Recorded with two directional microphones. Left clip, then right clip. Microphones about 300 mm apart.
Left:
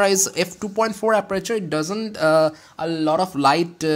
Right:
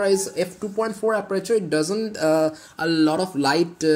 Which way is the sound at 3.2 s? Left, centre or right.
Centre.